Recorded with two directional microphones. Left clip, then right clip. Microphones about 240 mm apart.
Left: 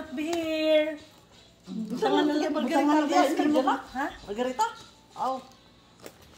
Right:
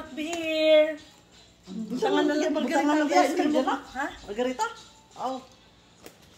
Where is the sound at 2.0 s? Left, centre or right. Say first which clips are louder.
Right 1 dB; centre.